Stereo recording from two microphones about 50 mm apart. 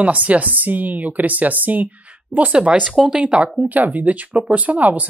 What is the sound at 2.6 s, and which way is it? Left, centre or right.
Speech, right.